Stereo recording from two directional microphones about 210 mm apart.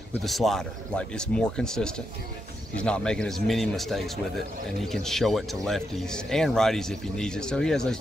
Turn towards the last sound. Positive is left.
turn(degrees=5)  # may be behind; listen again after turning